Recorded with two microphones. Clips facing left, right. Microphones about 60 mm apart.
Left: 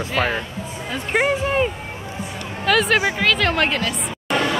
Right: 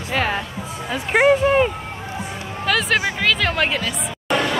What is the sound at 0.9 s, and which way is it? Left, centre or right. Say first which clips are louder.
Speech: right 5 dB; centre.